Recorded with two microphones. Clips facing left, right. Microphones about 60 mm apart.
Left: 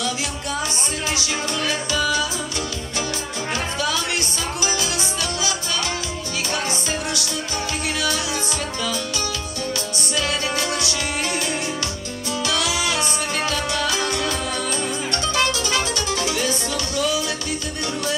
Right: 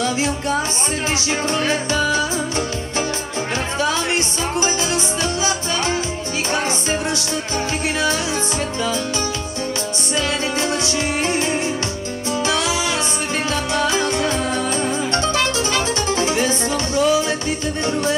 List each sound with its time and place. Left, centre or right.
0.0 s music: right
3.8 s music: right
10.1 s music: right
15.7 s music: right